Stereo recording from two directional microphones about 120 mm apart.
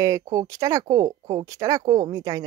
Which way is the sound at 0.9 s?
40° right (ahead or behind).